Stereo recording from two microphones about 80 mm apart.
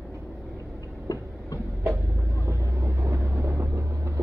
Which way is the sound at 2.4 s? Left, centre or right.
Right.